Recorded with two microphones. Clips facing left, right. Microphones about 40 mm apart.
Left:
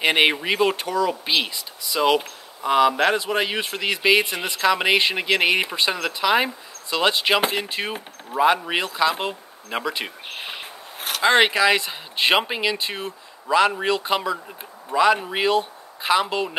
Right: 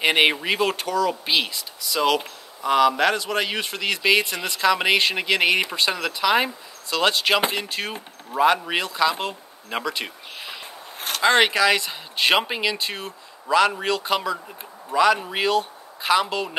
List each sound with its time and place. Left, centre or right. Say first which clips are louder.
0.0 s speech: even; centre
10.2 s a sound: left 3 dB; left
11.0 s speech: left 1 dB; centre